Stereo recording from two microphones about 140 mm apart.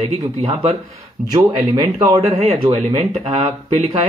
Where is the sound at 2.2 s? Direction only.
45° right (ahead or behind).